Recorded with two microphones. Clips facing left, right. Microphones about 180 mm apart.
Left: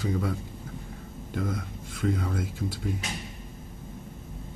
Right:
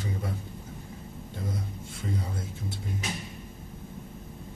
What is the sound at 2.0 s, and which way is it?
Speech, 90° left.